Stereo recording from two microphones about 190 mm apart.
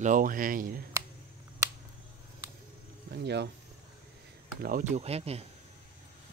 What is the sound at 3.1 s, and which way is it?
Speech, 60° right (ahead or behind).